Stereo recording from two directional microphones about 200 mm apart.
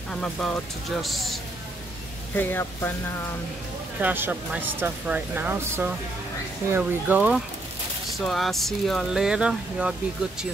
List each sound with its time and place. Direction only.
0.1 s speech: 5° left (ahead or behind)
4.0 s speech: 10° right (ahead or behind)